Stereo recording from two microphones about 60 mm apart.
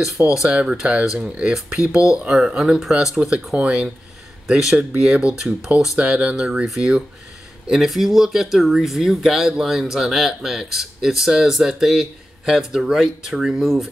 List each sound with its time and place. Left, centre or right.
0.3 s speech: centre